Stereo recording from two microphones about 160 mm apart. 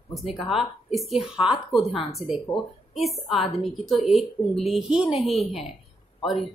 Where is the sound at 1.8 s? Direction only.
35° left (ahead or behind).